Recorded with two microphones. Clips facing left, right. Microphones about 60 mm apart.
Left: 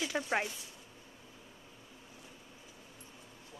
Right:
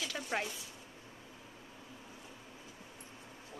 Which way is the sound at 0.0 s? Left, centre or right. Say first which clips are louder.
Left 4 dB; left.